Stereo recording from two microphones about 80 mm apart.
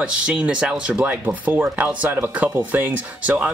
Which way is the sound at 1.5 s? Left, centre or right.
Right.